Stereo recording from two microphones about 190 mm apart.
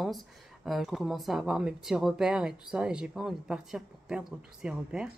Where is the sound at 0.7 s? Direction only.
Centre (ahead or behind).